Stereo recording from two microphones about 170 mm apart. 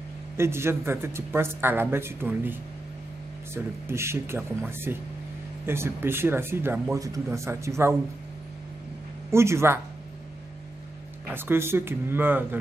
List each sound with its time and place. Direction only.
0.4 s speech: 15° right (ahead or behind)
9.3 s speech: 15° right (ahead or behind)
11.3 s speech: 15° right (ahead or behind)